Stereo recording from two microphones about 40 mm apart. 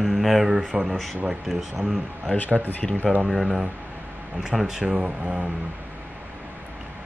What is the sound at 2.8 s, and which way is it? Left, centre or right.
Speech, centre.